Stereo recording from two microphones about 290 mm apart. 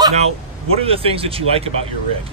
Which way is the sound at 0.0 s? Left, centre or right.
Right.